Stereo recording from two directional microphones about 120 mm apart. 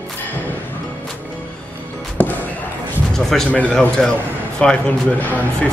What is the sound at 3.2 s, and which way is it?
A man's voice, 5° left (ahead or behind).